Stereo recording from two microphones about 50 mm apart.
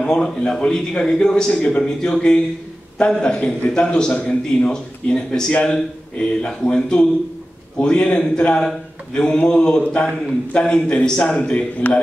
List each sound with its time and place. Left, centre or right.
0.0 s a man's voice: centre